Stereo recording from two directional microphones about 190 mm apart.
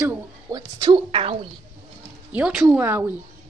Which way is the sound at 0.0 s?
15° right (ahead or behind).